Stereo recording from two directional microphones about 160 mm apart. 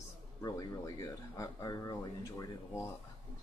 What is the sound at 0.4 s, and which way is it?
Speech, 20° left (ahead or behind).